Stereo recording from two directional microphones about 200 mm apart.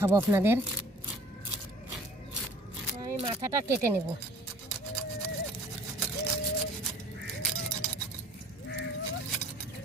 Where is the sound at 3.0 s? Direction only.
20° right (ahead or behind).